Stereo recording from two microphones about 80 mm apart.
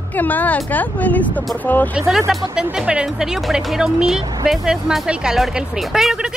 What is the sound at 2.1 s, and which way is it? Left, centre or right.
Speech, centre.